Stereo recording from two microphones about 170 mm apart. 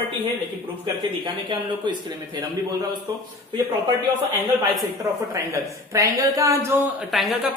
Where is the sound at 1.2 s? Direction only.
30° right (ahead or behind).